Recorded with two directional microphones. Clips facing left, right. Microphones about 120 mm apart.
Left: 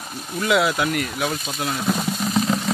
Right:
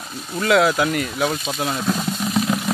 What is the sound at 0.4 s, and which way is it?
Speech, centre (ahead or behind).